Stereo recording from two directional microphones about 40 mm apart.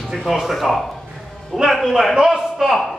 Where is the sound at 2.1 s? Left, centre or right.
Centre.